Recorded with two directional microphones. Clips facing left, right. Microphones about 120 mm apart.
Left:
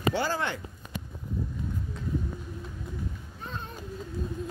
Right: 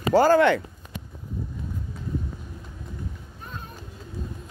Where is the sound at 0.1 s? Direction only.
45° right (ahead or behind).